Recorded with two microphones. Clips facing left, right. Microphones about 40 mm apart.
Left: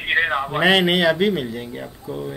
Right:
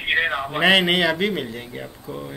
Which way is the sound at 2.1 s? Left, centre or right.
Centre.